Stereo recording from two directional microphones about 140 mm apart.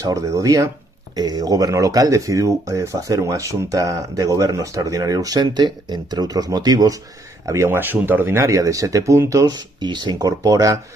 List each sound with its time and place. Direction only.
0.0 s speech: 25° right (ahead or behind)